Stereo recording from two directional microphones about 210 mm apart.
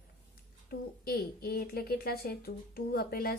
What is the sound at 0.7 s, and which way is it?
Speech, 45° left (ahead or behind).